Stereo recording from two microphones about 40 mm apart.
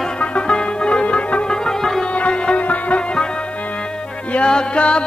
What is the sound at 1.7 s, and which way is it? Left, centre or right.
Music, centre.